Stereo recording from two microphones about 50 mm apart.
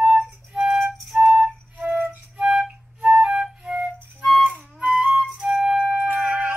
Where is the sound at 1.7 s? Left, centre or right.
Right.